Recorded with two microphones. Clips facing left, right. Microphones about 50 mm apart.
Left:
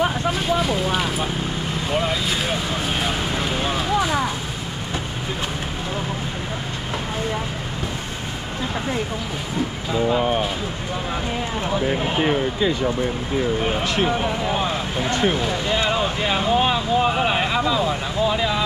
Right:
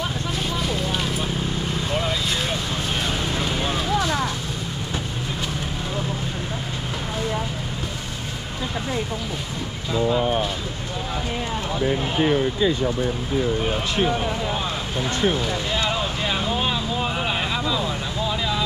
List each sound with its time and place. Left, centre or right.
0.3 s vehicle: centre
14.0 s speech: centre
15.7 s a sound: centre